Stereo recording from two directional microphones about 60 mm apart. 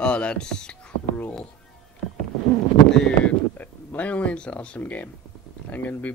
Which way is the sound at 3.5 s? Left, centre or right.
Left.